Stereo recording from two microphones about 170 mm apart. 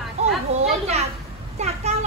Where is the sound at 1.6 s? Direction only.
40° right (ahead or behind).